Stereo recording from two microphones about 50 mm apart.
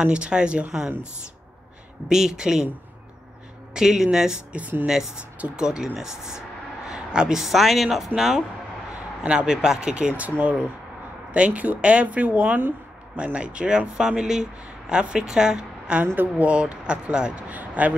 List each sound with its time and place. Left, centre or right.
0.0 s speech: right
2.0 s speech: centre
3.7 s speech: centre
4.5 s speech: right
4.8 s speech: centre
6.9 s a sound: centre
7.3 s speech: centre
9.2 s speech: right
11.3 s speech: right
13.2 s speech: right
17.5 s a man's voice: right